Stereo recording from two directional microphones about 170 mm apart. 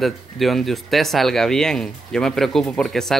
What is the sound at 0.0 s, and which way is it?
Speech, centre (ahead or behind).